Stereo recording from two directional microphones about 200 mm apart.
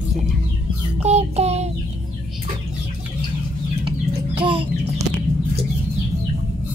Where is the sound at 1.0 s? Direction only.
35° right (ahead or behind).